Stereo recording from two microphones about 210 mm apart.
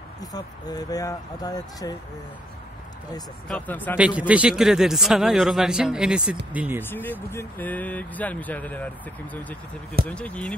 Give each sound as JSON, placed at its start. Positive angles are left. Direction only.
{"t": 0.2, "sound": "speech", "side_deg": 20}
{"t": 3.4, "sound": "speech", "side_deg": 5}
{"t": 3.9, "sound": "a man's voice", "side_deg": -5}
{"t": 6.8, "sound": "a man's voice", "side_deg": 10}